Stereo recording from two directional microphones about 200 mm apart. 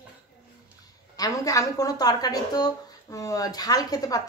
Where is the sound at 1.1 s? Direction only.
15° left (ahead or behind).